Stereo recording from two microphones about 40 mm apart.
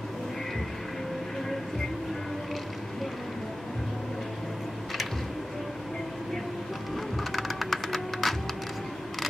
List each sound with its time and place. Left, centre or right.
7.3 s music: centre